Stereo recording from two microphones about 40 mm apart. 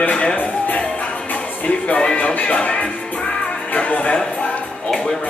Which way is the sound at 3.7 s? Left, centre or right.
Left.